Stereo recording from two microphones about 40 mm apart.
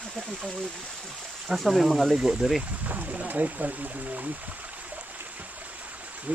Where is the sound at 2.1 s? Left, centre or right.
Centre.